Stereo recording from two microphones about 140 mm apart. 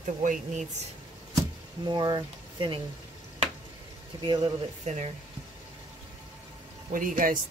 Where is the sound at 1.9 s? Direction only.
30° right (ahead or behind).